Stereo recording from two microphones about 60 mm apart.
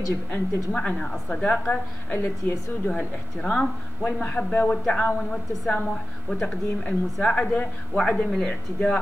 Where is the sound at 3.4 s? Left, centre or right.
Centre.